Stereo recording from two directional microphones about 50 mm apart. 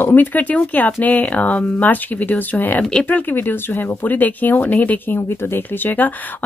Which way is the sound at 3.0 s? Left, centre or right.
Left.